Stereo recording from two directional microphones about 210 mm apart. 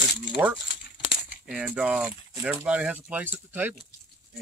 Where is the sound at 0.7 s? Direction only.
50° left (ahead or behind).